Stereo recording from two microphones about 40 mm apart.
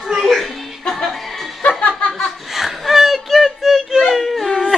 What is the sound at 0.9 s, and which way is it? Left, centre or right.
Music, centre.